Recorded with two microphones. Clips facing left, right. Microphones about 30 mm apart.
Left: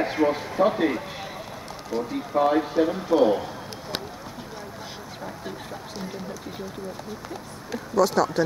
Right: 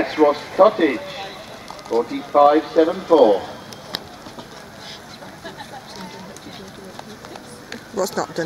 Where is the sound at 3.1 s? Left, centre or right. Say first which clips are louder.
Right 8 dB; right.